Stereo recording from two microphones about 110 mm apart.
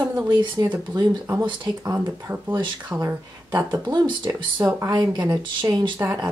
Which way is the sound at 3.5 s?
15° right (ahead or behind).